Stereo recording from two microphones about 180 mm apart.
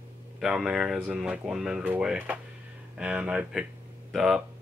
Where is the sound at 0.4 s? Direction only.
5° right (ahead or behind).